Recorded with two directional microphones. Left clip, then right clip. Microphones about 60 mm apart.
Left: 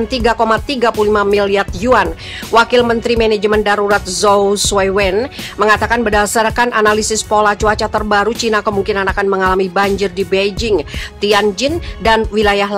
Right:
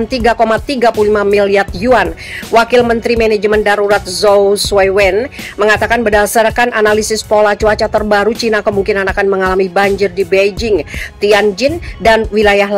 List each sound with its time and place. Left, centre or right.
0.1 s music: right
6.0 s speech: right
7.4 s music: right
9.9 s speech: centre
12.0 s music: centre